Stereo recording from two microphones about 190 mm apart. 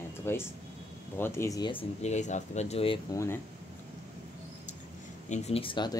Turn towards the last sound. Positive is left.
turn(degrees=25)  # may be behind; listen again after turning